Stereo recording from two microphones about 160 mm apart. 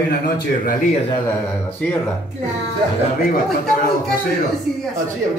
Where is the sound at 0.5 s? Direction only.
60° left (ahead or behind).